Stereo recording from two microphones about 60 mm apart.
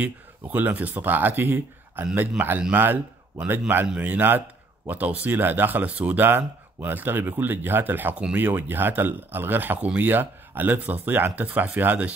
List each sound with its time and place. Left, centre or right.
0.0 s speech: right